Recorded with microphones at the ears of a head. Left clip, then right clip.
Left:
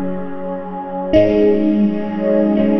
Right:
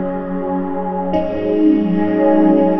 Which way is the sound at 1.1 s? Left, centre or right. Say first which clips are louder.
Left 10 dB; left.